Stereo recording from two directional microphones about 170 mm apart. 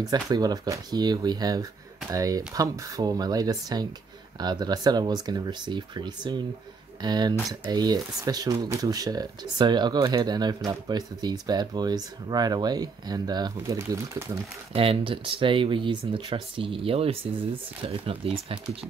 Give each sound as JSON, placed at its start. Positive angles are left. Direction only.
{"t": 0.0, "sound": "speech", "side_deg": -25}
{"t": 14.7, "sound": "speech", "side_deg": -35}